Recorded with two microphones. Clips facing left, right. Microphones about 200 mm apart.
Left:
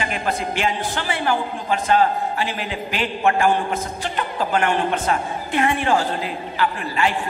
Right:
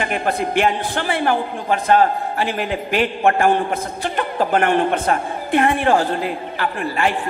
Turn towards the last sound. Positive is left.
turn(degrees=-55)  # may be behind; listen again after turning